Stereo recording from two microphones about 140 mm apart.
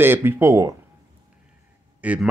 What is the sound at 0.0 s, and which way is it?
Speech, 15° right (ahead or behind).